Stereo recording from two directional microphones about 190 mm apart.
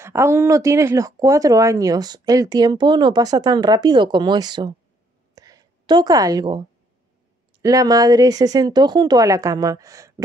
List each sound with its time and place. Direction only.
0.0 s speech: 15° right (ahead or behind)
5.3 s a sound: 20° right (ahead or behind)
7.5 s speech: 20° right (ahead or behind)